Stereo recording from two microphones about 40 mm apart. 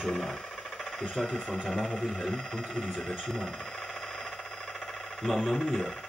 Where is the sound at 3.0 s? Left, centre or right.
Centre.